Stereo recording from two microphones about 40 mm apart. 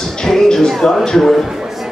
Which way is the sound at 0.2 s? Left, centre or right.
Centre.